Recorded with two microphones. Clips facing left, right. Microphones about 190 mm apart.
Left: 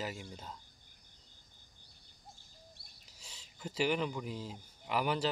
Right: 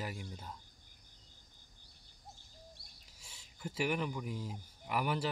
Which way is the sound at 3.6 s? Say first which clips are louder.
Left 2 dB; 5° right (ahead or behind).